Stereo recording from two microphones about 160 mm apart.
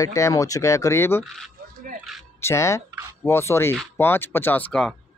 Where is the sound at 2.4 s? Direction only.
15° left (ahead or behind).